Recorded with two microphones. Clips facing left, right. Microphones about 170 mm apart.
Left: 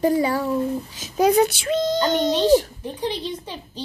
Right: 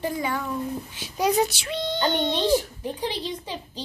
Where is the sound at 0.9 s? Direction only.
45° left (ahead or behind).